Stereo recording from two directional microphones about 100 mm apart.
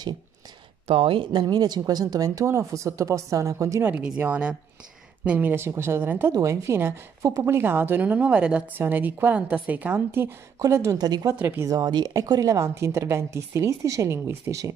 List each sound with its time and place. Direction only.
0.8 s speech: 65° right (ahead or behind)
1.3 s speech: 40° right (ahead or behind)
3.8 s a woman's voice: 15° right (ahead or behind); by 11.3 s 40° right (ahead or behind)
11.3 s a woman's voice: 20° right (ahead or behind)
11.7 s speech: 45° right (ahead or behind)